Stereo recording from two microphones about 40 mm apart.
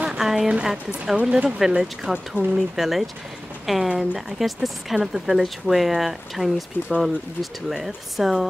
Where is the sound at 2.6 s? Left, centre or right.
Centre.